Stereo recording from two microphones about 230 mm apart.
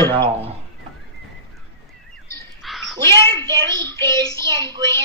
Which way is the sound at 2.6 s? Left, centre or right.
Centre.